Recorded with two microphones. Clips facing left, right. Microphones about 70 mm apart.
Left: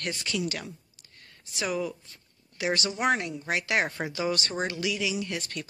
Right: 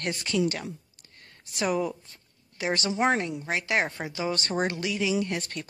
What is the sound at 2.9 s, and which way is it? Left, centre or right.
A woman's voice, right.